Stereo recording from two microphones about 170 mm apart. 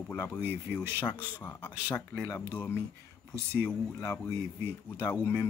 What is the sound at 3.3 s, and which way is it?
Speech, 15° right (ahead or behind).